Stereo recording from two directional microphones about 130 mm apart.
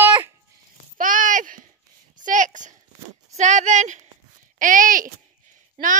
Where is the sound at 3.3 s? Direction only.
65° right (ahead or behind).